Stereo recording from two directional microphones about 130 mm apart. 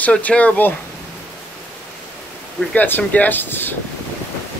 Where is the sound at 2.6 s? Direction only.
10° left (ahead or behind).